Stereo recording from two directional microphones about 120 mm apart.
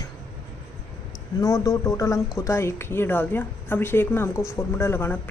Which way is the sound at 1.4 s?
30° left (ahead or behind).